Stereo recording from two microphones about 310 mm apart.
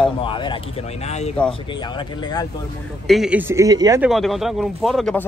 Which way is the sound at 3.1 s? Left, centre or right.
Centre.